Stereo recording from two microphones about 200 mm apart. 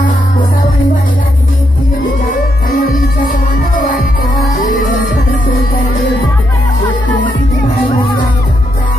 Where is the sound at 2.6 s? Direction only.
45° left (ahead or behind).